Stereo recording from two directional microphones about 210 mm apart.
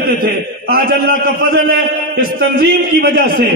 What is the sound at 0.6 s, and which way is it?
Speech, 45° right (ahead or behind).